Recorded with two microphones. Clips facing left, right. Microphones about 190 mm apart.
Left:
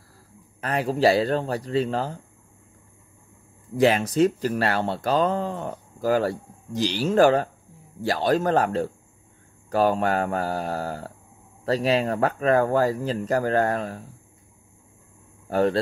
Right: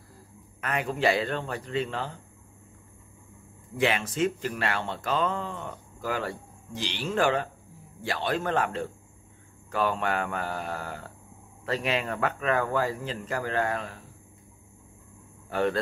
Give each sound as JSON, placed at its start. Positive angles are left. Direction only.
{"t": 0.6, "sound": "speech", "side_deg": 35}
{"t": 3.7, "sound": "speech", "side_deg": 40}
{"t": 15.5, "sound": "speech", "side_deg": 40}